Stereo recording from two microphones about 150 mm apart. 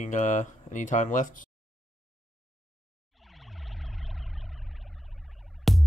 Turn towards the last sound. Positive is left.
turn(degrees=0)  # may be behind; listen again after turning